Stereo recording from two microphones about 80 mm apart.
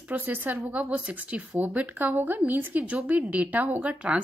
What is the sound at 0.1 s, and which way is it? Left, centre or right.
Speech, right.